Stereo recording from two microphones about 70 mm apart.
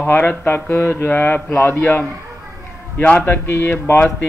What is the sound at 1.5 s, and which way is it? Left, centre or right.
Speech, left.